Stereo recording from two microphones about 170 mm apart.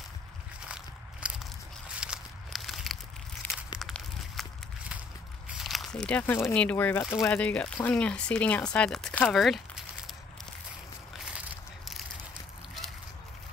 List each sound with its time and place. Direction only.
1.2 s biting: 5° right (ahead or behind)
2.0 s walk: centre (ahead or behind)
3.8 s a sound: centre (ahead or behind)
5.6 s speech: centre (ahead or behind)
7.0 s speech: 20° left (ahead or behind)
7.2 s speech: 5° left (ahead or behind)